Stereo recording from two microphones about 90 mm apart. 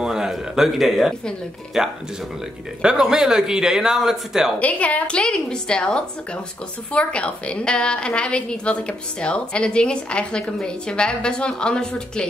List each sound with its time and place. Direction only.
0.0 s a man's voice: 5° right (ahead or behind)
4.6 s a woman's voice: 15° left (ahead or behind)